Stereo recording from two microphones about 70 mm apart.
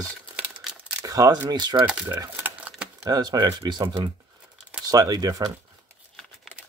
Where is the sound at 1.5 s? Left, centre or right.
Right.